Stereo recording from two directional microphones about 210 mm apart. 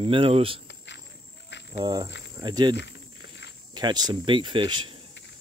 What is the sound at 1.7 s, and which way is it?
Speech, 20° right (ahead or behind).